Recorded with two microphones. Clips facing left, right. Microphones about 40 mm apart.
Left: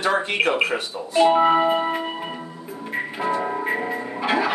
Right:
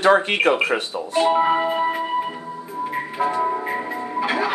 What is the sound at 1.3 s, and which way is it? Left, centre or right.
Music, centre.